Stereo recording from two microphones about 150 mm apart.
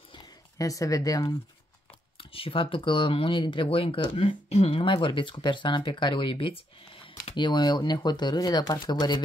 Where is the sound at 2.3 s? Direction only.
35° left (ahead or behind).